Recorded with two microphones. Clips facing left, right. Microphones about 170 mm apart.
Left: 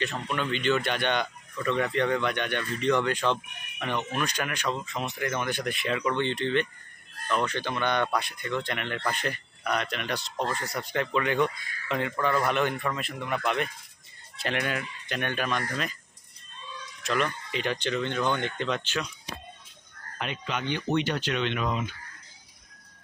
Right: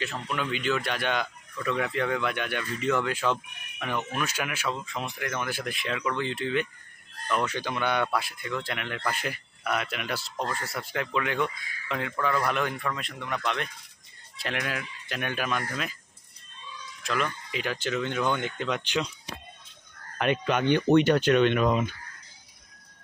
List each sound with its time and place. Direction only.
0.0 s speech: centre (ahead or behind)
17.0 s speech: centre (ahead or behind)
20.2 s speech: 55° right (ahead or behind)